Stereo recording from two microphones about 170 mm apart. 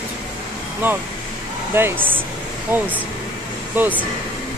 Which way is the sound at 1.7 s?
15° right (ahead or behind).